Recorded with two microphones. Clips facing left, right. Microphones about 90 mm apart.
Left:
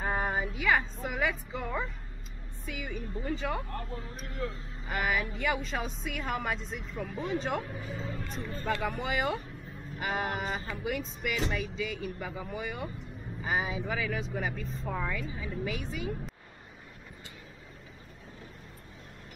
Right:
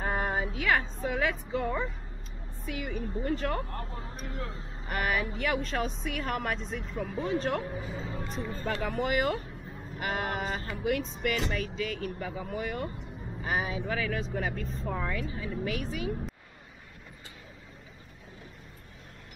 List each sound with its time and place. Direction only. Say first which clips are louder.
0.0 s a woman's voice: right 1 dB; centre (ahead or behind)
4.3 s speech: left 4 dB; 35° right (ahead or behind)
4.8 s speech: right 1 dB; centre (ahead or behind)